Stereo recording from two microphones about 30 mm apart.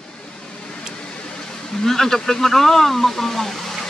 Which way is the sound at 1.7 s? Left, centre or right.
Centre.